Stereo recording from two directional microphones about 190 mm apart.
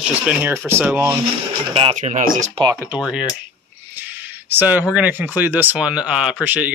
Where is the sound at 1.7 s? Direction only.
30° right (ahead or behind).